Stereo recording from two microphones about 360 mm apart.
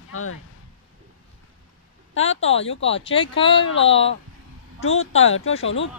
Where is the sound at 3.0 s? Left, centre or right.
Centre.